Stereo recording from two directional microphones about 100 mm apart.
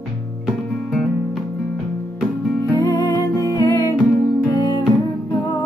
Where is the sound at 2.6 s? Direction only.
35° left (ahead or behind).